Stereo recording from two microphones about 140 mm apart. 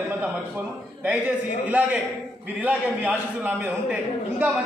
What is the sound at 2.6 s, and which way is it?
A man's voice, 10° right (ahead or behind).